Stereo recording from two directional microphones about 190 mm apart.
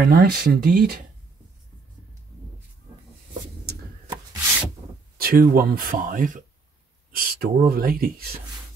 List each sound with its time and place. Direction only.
0.0 s speech: 60° right (ahead or behind)
5.1 s speech: 50° right (ahead or behind)